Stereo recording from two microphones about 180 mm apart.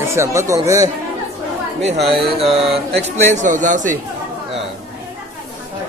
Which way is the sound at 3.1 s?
40° right (ahead or behind).